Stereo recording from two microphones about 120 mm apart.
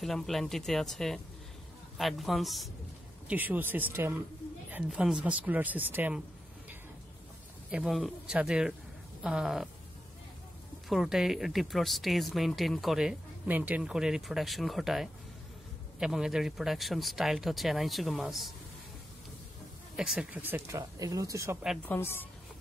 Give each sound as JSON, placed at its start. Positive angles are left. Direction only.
{"t": 0.0, "sound": "speech", "side_deg": 0}
{"t": 3.3, "sound": "speech", "side_deg": -15}
{"t": 7.7, "sound": "speech", "side_deg": -5}
{"t": 10.9, "sound": "speech", "side_deg": 0}
{"t": 13.5, "sound": "speech", "side_deg": -15}
{"t": 20.0, "sound": "speech", "side_deg": -5}
{"t": 21.8, "sound": "a woman's voice", "side_deg": 20}